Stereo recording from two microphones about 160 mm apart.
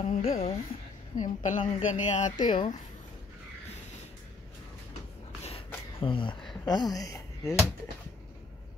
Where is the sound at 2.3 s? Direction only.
30° left (ahead or behind).